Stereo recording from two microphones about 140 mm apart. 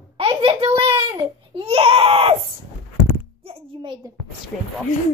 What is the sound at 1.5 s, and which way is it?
Baby cry, 40° right (ahead or behind).